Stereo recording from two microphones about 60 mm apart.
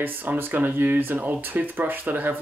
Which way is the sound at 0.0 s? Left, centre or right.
Right.